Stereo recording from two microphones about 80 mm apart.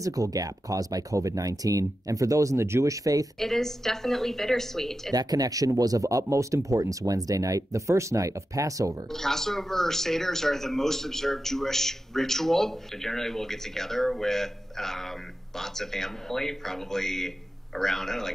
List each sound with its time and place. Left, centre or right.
0.0 s speech: right
3.3 s speech: centre
5.1 s speech: right
9.1 s speech: centre